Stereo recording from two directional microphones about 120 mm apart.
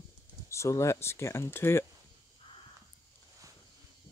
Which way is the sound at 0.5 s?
25° left (ahead or behind).